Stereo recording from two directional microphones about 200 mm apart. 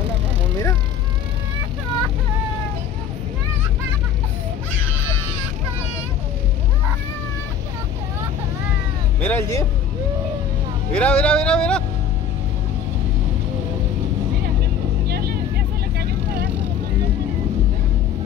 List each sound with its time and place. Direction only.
9.2 s a sound: 10° left (ahead or behind)
10.9 s music: 5° left (ahead or behind)
15.0 s vehicle: 50° right (ahead or behind)